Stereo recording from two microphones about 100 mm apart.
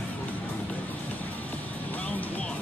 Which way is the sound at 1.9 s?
15° left (ahead or behind).